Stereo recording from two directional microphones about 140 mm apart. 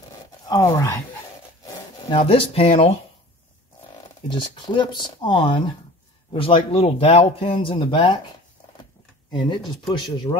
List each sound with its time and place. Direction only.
0.5 s speech: 25° left (ahead or behind)
2.0 s speech: 40° left (ahead or behind)
4.3 s speech: 35° left (ahead or behind)
9.3 s speech: 35° left (ahead or behind)